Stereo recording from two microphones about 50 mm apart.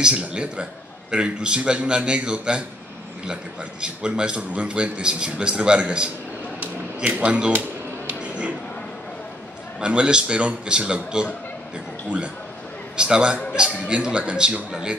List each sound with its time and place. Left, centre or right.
0.0 s a man's voice: right
3.8 s a man's voice: centre
7.1 s a man's voice: right
8.1 s a sound: right
9.8 s a man's voice: right